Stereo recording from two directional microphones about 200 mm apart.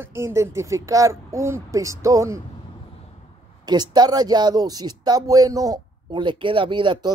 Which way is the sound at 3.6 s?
20° right (ahead or behind).